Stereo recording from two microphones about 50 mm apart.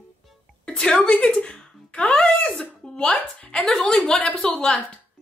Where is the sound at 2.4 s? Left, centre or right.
Centre.